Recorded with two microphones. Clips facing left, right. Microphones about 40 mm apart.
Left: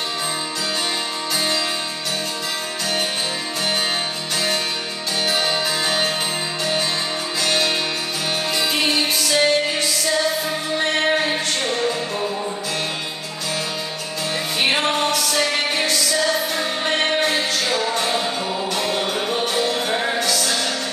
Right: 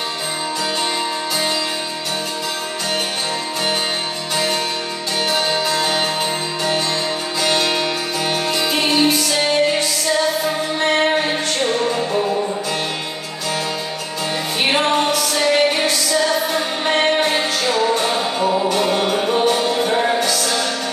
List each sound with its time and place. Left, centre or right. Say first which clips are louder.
5.3 s music: right 3 dB; centre
7.4 s music: right 3 dB; centre
14.6 s music: right 3 dB; centre